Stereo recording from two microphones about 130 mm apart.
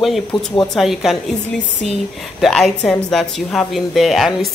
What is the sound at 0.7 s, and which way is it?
A woman's voice, centre (ahead or behind).